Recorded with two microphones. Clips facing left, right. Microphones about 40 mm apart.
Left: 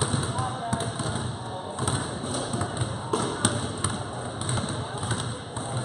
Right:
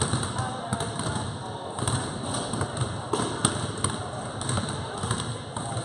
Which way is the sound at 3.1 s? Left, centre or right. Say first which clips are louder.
Left 1 dB; centre.